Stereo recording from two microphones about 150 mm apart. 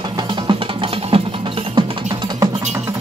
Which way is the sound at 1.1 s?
40° right (ahead or behind).